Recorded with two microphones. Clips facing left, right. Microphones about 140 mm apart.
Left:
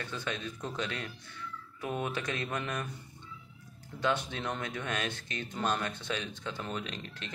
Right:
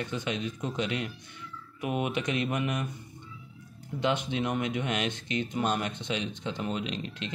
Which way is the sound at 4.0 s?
20° right (ahead or behind).